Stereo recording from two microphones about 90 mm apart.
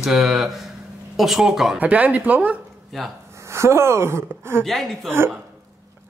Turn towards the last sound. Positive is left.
turn(degrees=0)  # may be behind; listen again after turning